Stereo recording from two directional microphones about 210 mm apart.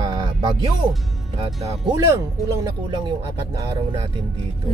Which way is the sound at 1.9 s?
15° right (ahead or behind).